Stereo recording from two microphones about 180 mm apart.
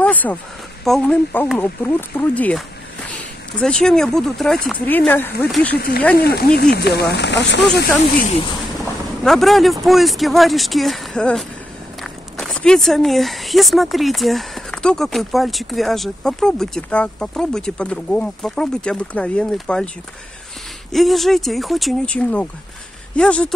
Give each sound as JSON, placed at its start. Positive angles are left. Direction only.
{"t": 0.0, "sound": "speech", "side_deg": 10}
{"t": 5.8, "sound": "speech", "side_deg": 60}
{"t": 9.2, "sound": "speech", "side_deg": 0}
{"t": 20.9, "sound": "speech", "side_deg": 0}